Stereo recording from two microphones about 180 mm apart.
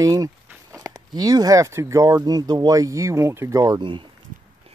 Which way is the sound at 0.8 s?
20° right (ahead or behind).